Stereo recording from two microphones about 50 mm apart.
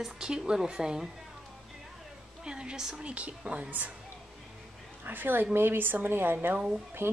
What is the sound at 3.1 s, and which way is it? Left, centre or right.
Speech, right.